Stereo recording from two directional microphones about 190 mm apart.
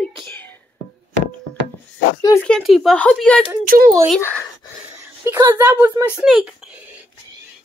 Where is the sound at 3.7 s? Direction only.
50° right (ahead or behind).